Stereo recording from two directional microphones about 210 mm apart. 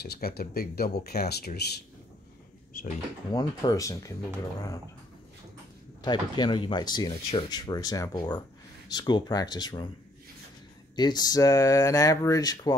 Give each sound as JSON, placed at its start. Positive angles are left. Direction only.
{"t": 0.0, "sound": "speech", "side_deg": 50}
{"t": 3.3, "sound": "speech", "side_deg": 15}
{"t": 6.0, "sound": "speech", "side_deg": 20}
{"t": 11.0, "sound": "speech", "side_deg": 20}